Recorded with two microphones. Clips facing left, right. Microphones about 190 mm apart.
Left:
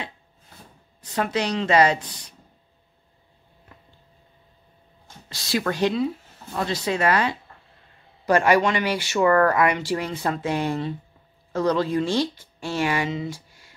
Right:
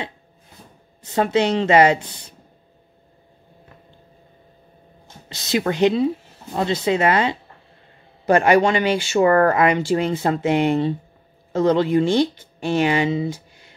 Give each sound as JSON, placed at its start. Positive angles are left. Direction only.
{"t": 1.0, "sound": "speech", "side_deg": -25}
{"t": 5.0, "sound": "speech", "side_deg": -20}